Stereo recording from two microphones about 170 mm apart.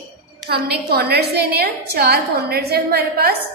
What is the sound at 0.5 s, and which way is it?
A woman's voice, 70° right (ahead or behind).